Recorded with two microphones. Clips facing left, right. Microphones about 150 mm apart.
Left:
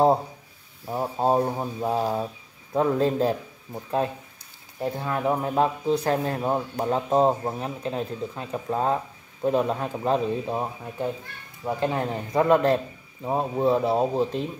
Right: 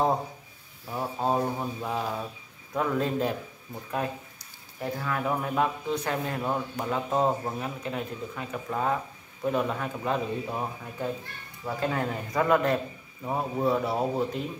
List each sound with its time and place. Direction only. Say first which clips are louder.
0.8 s a man's voice: left 5 dB; 30° left (ahead or behind)
11.6 s a man's voice: left 3 dB; 20° left (ahead or behind)